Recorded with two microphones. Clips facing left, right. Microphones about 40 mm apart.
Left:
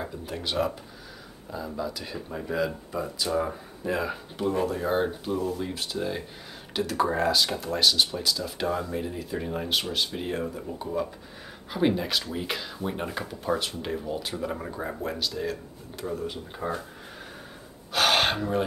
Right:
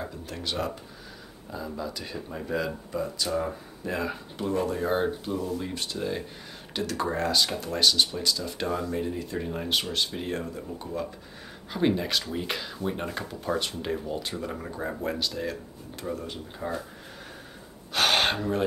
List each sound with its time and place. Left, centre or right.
0.0 s speech: centre
16.6 s speech: centre
17.9 s speech: centre